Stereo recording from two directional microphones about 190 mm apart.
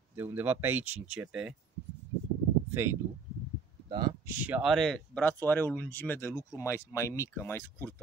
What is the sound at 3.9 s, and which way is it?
Speech, 25° right (ahead or behind).